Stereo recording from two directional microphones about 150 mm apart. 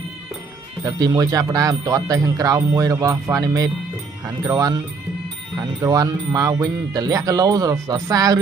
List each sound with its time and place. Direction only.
0.8 s speech: 25° right (ahead or behind)